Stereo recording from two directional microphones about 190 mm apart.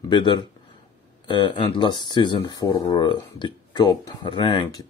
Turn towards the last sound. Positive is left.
turn(degrees=25)  # may be behind; listen again after turning